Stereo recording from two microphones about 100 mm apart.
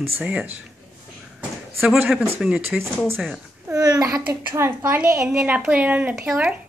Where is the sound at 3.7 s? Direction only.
40° right (ahead or behind).